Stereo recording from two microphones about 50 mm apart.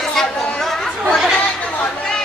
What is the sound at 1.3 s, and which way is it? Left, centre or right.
Chatter, left.